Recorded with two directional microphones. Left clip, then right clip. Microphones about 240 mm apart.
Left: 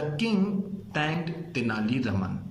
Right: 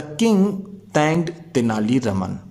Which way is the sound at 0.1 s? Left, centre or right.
Right.